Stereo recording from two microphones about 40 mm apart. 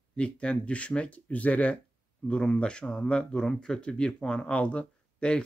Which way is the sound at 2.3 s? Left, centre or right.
Left.